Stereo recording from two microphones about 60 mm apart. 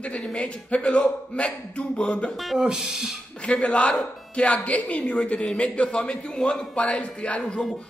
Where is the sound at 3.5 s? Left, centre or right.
Centre.